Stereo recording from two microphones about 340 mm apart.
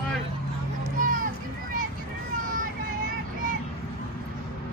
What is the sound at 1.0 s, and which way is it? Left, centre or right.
Vehicle, right.